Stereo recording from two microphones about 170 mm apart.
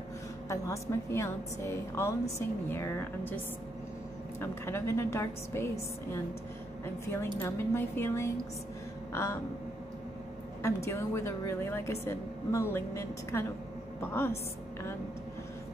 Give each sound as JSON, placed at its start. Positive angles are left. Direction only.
{"t": 0.5, "sound": "a woman's voice", "side_deg": 15}
{"t": 4.4, "sound": "a woman's voice", "side_deg": 15}
{"t": 7.4, "sound": "a woman's voice", "side_deg": 15}
{"t": 10.6, "sound": "a woman's voice", "side_deg": 15}